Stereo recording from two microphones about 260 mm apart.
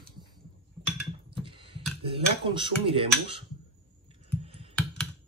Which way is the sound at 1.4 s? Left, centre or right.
Centre.